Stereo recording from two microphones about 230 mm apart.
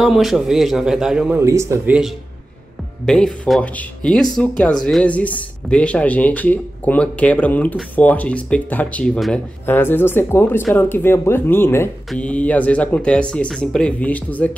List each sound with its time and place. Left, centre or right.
0.0 s speech: centre
3.1 s speech: centre